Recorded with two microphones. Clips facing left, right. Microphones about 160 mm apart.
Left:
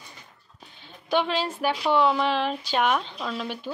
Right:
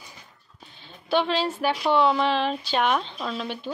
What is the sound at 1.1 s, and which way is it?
Speech, 10° left (ahead or behind).